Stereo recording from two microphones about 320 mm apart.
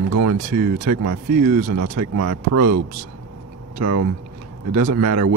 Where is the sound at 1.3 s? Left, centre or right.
Right.